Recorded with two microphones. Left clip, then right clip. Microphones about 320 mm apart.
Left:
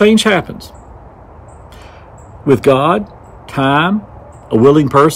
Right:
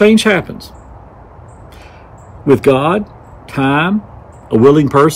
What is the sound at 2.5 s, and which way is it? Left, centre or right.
Speech, centre.